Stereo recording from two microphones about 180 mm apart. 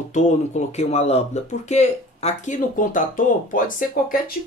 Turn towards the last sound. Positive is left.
turn(degrees=50)  # may be behind; listen again after turning